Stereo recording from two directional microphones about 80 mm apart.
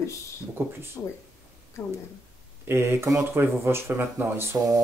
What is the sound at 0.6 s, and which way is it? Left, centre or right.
Speech, right.